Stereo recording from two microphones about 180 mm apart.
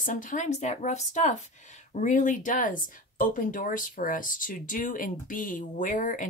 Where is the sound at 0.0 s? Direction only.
45° left (ahead or behind).